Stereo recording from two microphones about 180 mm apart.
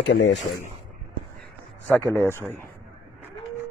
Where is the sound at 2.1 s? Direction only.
10° left (ahead or behind).